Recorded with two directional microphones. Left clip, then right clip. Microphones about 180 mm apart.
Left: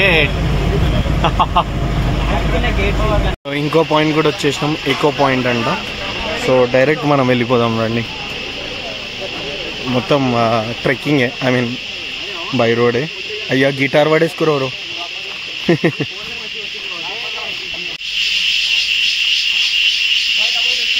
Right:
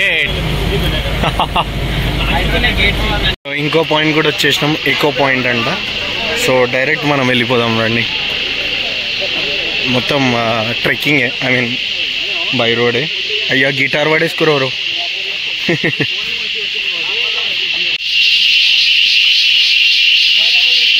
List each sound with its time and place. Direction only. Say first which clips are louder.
0.0 s vehicle: left 1 dB; 15° right (ahead or behind)
1.4 s speech: left 1 dB; 20° right (ahead or behind)
3.7 s speech: right 1 dB; 5° left (ahead or behind)
9.9 s speech: left 2 dB; centre (ahead or behind)
15.6 s speech: left 1 dB; 10° left (ahead or behind)